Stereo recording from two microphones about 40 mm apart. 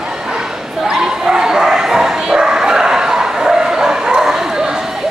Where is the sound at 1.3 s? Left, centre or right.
Centre.